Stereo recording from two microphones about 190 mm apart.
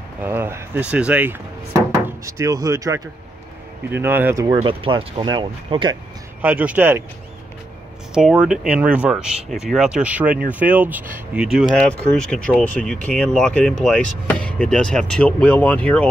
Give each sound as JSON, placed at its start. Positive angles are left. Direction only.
{"t": 0.2, "sound": "speech", "side_deg": -10}
{"t": 4.5, "sound": "speech", "side_deg": -30}
{"t": 6.4, "sound": "speech", "side_deg": -10}
{"t": 8.1, "sound": "speech", "side_deg": -5}